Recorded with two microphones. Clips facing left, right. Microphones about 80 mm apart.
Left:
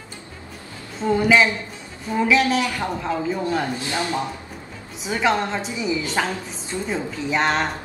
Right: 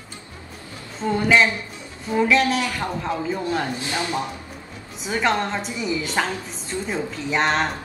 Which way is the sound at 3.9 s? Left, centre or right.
Left.